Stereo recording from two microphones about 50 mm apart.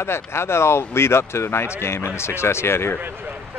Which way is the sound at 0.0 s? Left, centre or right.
Left.